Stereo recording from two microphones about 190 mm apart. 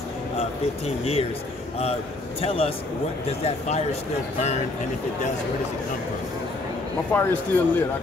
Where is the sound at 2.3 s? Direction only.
30° left (ahead or behind).